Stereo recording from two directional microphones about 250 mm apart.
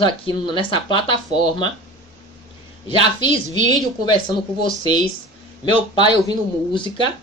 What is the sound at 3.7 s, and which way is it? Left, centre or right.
Speech, centre.